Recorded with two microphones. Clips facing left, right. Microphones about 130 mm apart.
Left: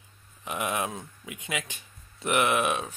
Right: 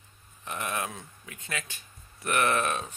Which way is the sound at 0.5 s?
15° left (ahead or behind).